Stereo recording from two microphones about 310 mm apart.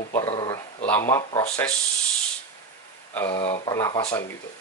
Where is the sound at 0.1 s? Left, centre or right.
Centre.